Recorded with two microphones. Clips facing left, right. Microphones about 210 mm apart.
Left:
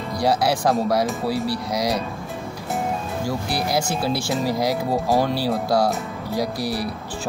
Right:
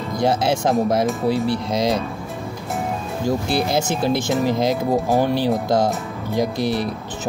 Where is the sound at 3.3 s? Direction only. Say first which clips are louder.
Right 6 dB; 25° right (ahead or behind).